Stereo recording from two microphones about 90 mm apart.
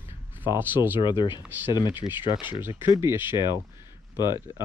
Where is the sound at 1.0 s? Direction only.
60° left (ahead or behind).